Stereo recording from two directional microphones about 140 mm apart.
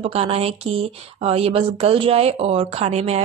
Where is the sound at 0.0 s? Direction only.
45° right (ahead or behind).